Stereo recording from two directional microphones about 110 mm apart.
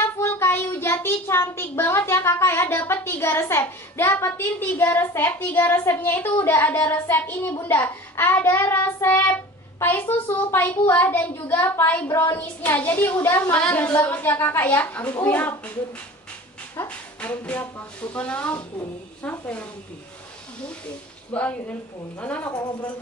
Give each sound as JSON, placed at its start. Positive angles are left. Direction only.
{"t": 0.0, "sound": "child singing", "side_deg": 20}
{"t": 9.8, "sound": "a woman's voice", "side_deg": 20}
{"t": 12.1, "sound": "a woman's voice", "side_deg": 40}
{"t": 12.4, "sound": "a woman's voice", "side_deg": 15}
{"t": 16.8, "sound": "a woman's voice", "side_deg": 15}
{"t": 21.3, "sound": "a woman's voice", "side_deg": 15}
{"t": 22.5, "sound": "a woman's voice", "side_deg": 40}